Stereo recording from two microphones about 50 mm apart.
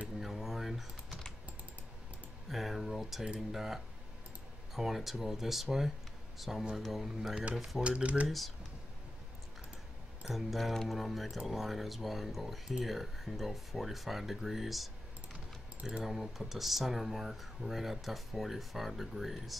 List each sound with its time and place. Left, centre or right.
0.2 s typing: centre
2.5 s a sound: centre
3.3 s speech: centre
7.8 s speech: right
10.3 s speech: centre
16.0 s speech: centre